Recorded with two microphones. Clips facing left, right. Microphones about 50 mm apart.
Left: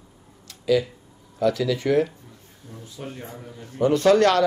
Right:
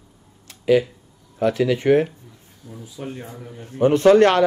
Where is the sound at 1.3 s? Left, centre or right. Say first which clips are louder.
Right 3 dB; right.